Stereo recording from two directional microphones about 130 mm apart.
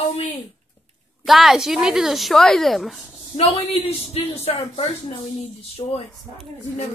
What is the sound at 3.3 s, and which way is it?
A woman's voice, 50° left (ahead or behind).